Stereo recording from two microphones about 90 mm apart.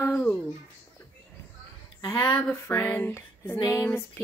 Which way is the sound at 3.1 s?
30° left (ahead or behind).